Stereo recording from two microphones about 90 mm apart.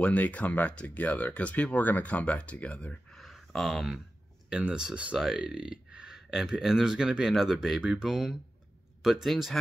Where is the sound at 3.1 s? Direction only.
Centre (ahead or behind).